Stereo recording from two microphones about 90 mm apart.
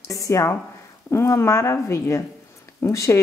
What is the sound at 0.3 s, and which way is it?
Speech, 35° left (ahead or behind).